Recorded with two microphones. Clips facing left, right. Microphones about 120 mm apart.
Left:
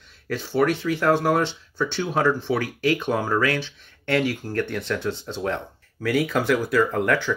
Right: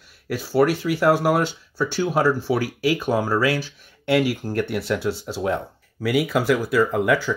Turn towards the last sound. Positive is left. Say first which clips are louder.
# right 2 dB
turn(degrees=-5)  # may be behind; listen again after turning